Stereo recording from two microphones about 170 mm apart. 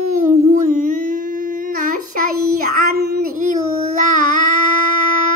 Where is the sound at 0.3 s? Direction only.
40° right (ahead or behind).